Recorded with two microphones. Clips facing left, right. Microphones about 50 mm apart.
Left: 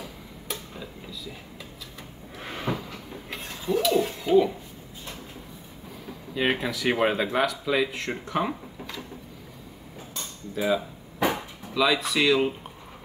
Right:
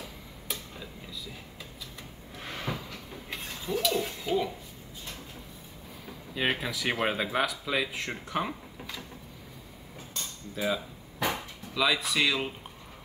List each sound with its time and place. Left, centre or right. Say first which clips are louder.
0.0 s tick-tock: left 3 dB; centre
2.3 s a sound: left 5 dB; centre
6.0 s speech: left 4 dB; centre
10.1 s cutlery: left 5 dB; centre
11.1 s a sound: left 5 dB; centre
11.7 s speech: left 4 dB; centre